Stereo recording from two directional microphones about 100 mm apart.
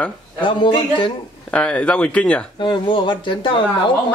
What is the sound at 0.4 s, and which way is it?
Speech, 55° left (ahead or behind).